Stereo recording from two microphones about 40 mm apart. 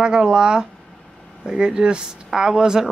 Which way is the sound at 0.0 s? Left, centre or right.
Right.